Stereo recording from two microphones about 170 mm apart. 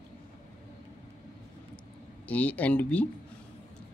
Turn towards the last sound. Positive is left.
turn(degrees=10)  # may be behind; listen again after turning